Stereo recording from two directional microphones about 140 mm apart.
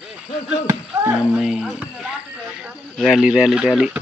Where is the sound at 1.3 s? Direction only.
5° right (ahead or behind).